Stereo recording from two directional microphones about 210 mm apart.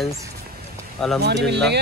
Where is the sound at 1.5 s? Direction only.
55° right (ahead or behind).